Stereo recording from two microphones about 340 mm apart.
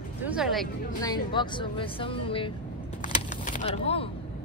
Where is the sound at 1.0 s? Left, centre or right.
Centre.